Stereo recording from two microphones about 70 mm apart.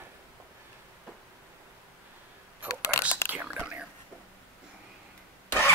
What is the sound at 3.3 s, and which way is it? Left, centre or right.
Whispering, right.